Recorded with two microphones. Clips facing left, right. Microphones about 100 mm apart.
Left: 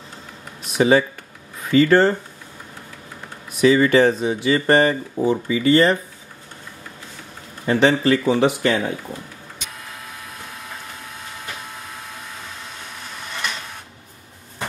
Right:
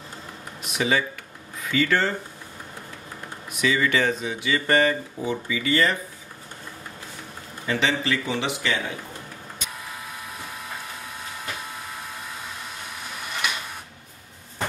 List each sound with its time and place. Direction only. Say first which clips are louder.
0.7 s speech: left 8 dB; 35° left (ahead or behind)
3.6 s speech: left 8 dB; 35° left (ahead or behind)
7.6 s speech: left 8 dB; 40° left (ahead or behind)
11.7 s vehicle: even; centre (ahead or behind)
13.2 s printer: even; 10° right (ahead or behind)